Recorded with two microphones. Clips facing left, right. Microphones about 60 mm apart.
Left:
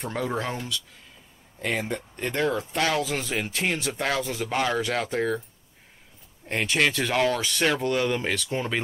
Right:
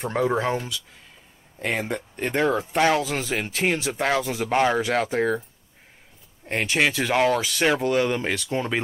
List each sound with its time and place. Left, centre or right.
0.1 s speech: centre
3.0 s speech: centre
4.5 s speech: right
6.5 s speech: centre
7.4 s speech: centre
7.7 s speech: centre